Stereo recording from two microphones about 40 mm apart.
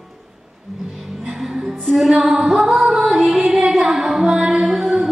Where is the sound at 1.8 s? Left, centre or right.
Centre.